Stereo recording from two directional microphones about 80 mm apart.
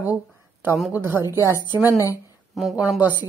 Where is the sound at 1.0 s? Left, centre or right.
Right.